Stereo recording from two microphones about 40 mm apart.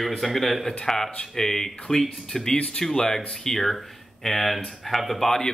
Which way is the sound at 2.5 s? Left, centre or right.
Left.